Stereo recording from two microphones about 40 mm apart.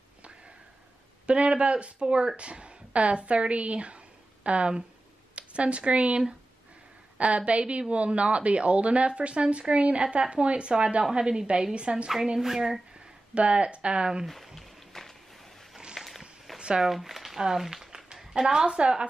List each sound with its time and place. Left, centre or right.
1.2 s speech: right
12.4 s speech: centre
13.3 s speech: right
14.2 s a sound: centre
16.0 s walk: centre
16.5 s a sound: right
16.8 s speech: centre
17.4 s a sound: centre
18.5 s speech: centre